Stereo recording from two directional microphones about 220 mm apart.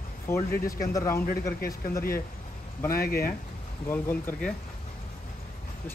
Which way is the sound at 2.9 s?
45° left (ahead or behind).